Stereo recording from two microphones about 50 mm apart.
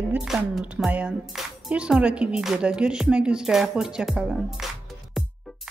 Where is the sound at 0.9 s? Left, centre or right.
Right.